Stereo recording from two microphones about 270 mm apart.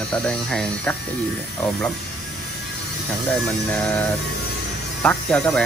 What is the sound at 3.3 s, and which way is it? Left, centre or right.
Speech, centre.